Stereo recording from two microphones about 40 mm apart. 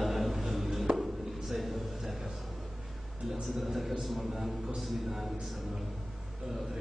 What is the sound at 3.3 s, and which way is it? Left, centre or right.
Speech, centre.